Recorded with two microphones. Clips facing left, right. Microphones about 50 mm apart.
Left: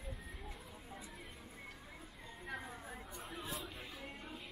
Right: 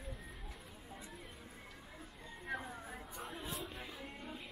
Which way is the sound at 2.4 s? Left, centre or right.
Centre.